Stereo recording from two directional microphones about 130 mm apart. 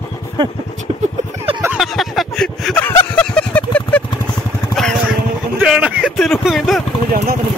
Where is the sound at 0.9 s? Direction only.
45° right (ahead or behind).